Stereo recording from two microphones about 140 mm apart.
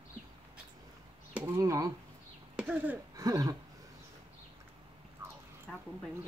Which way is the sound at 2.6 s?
10° right (ahead or behind).